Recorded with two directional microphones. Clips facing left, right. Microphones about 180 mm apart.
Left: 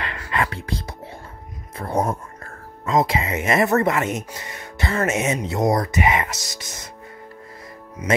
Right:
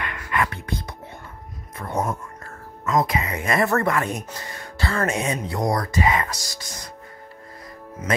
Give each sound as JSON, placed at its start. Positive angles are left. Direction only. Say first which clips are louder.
{"t": 0.0, "sound": "music", "louder": "even", "side_deg": 30}
{"t": 1.8, "sound": "speech", "louder": "left 3 dB", "side_deg": 30}